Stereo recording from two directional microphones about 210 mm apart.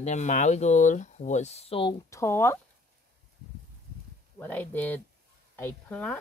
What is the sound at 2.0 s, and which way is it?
Speech, 15° left (ahead or behind).